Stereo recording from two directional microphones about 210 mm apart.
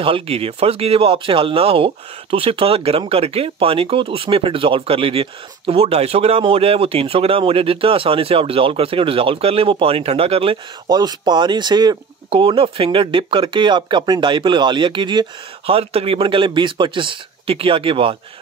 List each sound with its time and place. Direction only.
0.0 s speech: 25° right (ahead or behind)